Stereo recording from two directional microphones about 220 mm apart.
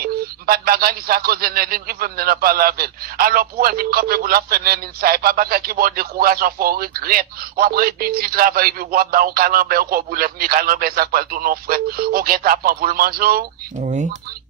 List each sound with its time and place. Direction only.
0.0 s speech: 40° right (ahead or behind)